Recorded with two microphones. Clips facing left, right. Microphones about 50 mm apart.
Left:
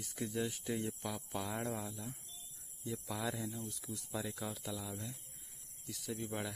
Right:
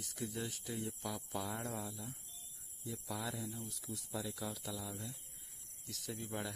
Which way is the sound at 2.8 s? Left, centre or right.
Left.